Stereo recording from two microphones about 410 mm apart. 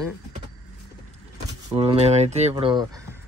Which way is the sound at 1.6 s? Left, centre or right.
Centre.